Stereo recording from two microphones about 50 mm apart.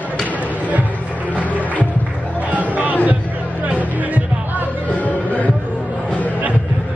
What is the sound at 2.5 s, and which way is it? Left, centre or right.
Music, right.